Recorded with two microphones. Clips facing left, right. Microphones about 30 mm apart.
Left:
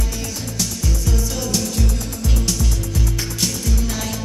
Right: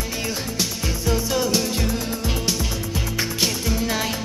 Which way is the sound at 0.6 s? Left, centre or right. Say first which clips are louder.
Even; right.